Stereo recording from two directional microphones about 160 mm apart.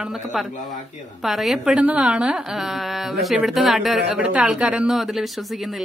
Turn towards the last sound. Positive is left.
turn(degrees=0)  # may be behind; listen again after turning